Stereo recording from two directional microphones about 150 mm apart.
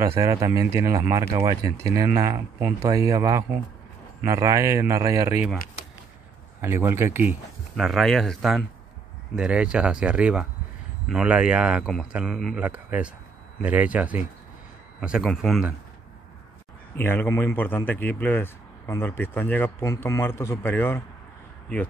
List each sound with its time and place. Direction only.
0.0 s speech: 20° right (ahead or behind)
6.6 s speech: 15° right (ahead or behind)
7.7 s speech: centre (ahead or behind)
12.5 s a man's voice: 10° right (ahead or behind)
16.9 s a man's voice: 15° left (ahead or behind)